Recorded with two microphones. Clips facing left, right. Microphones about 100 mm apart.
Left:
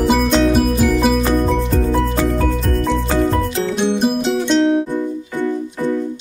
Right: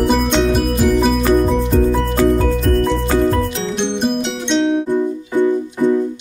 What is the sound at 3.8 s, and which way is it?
Music, 5° left (ahead or behind).